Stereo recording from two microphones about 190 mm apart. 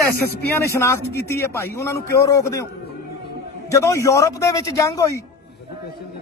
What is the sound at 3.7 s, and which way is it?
A man's voice, 15° left (ahead or behind).